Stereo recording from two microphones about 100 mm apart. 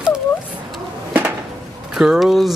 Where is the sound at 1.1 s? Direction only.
20° right (ahead or behind).